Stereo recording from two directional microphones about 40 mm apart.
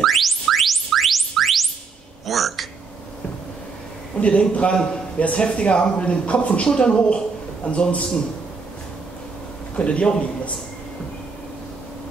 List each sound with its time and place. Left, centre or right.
0.0 s chirp tone: centre
2.2 s a sound: centre
4.2 s a man's voice: left
9.8 s speech: left